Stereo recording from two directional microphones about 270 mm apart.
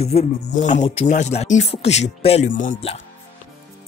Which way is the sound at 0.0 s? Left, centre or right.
Left.